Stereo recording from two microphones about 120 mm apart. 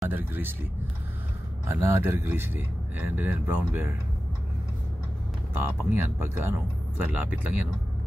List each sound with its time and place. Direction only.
0.1 s speech: 15° right (ahead or behind)
1.7 s speech: 20° right (ahead or behind)
5.6 s speech: 20° right (ahead or behind)